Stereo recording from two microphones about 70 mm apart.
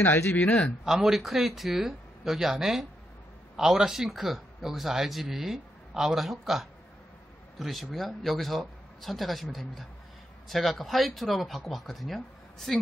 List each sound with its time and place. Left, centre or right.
0.0 s speech: left
0.8 s speech: centre